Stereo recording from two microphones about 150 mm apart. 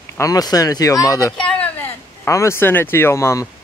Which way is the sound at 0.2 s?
25° left (ahead or behind).